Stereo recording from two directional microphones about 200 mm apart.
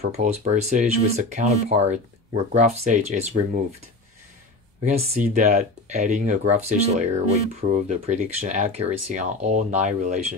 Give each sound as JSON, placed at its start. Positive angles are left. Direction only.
{"t": 0.0, "sound": "speech", "side_deg": -35}
{"t": 5.3, "sound": "speech", "side_deg": -35}